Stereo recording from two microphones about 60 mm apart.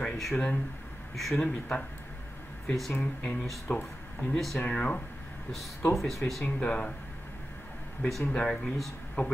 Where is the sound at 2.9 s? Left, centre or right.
Centre.